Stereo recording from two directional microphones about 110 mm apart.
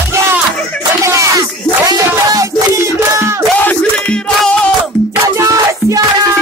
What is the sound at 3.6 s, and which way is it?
Music, 15° left (ahead or behind).